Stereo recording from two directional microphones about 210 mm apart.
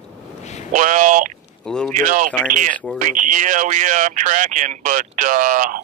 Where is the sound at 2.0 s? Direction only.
40° right (ahead or behind).